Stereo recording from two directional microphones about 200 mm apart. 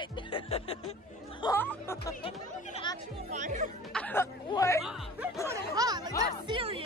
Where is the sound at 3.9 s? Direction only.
10° left (ahead or behind).